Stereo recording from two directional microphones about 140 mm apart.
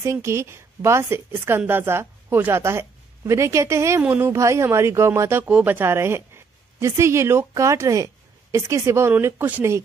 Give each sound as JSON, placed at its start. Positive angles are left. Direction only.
{"t": 0.0, "sound": "a woman's voice", "side_deg": -20}
{"t": 5.4, "sound": "a woman's voice", "side_deg": -10}